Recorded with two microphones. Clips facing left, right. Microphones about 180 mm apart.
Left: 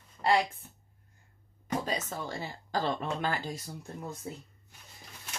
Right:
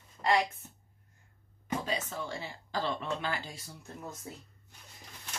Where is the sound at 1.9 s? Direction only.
40° left (ahead or behind).